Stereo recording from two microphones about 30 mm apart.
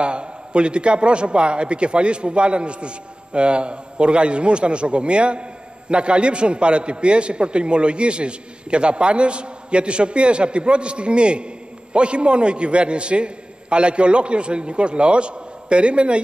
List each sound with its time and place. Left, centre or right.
0.0 s a man's voice: right